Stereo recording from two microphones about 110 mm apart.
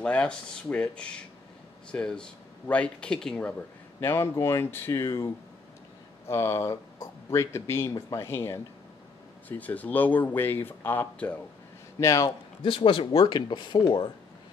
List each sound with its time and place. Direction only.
0.0 s speech: 10° left (ahead or behind)
4.0 s speech: 25° left (ahead or behind)
12.0 s speech: 30° left (ahead or behind)
12.6 s speech: 50° left (ahead or behind)